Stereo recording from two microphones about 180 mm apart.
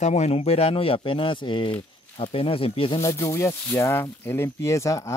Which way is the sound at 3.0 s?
15° left (ahead or behind).